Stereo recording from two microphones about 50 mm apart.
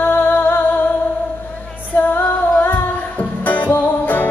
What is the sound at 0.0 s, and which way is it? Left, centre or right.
Music, left.